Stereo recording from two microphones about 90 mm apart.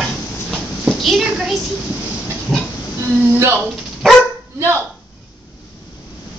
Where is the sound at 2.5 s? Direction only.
5° right (ahead or behind).